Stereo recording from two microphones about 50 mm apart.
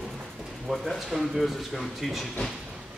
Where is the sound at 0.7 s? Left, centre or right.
Centre.